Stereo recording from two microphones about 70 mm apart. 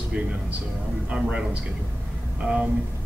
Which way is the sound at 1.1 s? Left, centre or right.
Centre.